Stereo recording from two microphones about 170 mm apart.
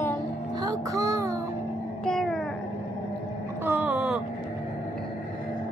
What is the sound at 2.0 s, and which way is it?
Cat, 5° left (ahead or behind).